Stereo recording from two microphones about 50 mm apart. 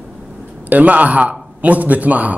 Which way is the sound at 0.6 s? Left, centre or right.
Right.